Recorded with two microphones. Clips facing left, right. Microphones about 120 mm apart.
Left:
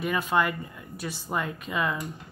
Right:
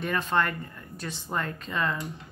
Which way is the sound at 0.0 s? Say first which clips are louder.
Left 1 dB; 10° left (ahead or behind).